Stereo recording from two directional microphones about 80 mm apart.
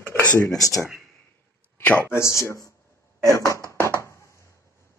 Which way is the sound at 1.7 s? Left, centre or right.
Centre.